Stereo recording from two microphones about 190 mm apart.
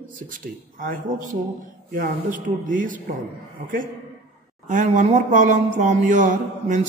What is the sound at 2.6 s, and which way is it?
Speech, 45° right (ahead or behind).